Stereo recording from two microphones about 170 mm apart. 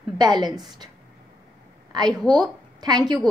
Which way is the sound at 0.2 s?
25° right (ahead or behind).